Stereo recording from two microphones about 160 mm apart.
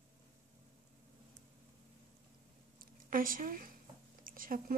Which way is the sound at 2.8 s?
60° right (ahead or behind).